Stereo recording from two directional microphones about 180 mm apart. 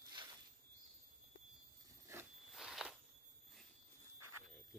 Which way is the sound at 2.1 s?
15° right (ahead or behind).